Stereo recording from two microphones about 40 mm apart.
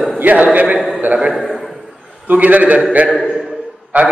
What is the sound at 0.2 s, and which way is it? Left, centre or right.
Speech, right.